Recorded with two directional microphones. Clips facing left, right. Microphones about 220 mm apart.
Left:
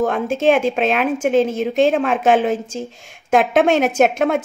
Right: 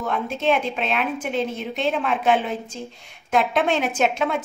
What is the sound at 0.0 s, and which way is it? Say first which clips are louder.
A woman's voice: left 7 dB; 50° left (ahead or behind).